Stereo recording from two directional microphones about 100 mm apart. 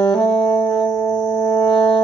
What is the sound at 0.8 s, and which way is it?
Music, 25° left (ahead or behind).